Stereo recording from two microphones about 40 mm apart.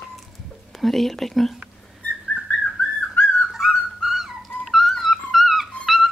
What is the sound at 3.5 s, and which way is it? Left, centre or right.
Dog, centre.